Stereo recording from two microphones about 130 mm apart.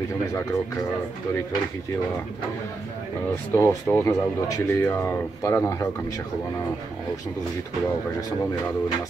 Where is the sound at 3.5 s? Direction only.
20° left (ahead or behind).